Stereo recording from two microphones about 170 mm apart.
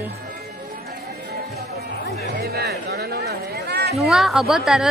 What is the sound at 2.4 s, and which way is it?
Chatter, 70° right (ahead or behind).